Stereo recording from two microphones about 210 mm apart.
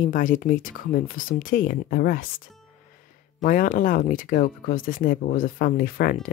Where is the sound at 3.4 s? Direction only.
40° left (ahead or behind).